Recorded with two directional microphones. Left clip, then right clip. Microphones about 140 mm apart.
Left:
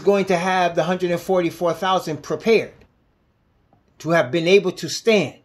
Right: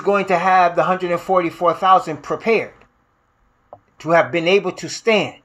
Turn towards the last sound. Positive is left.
turn(degrees=50)  # may be behind; listen again after turning